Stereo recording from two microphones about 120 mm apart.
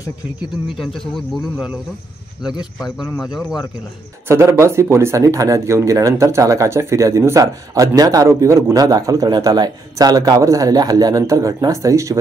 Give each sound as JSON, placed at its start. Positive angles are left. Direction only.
{"t": 0.7, "sound": "speech", "side_deg": 0}
{"t": 3.2, "sound": "speech", "side_deg": 0}
{"t": 4.3, "sound": "speech", "side_deg": -25}